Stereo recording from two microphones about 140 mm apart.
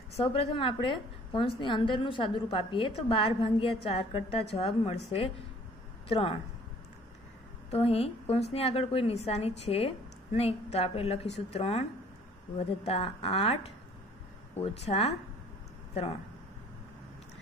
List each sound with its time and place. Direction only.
0.2 s a woman's voice: 40° left (ahead or behind)
7.7 s a woman's voice: 45° left (ahead or behind)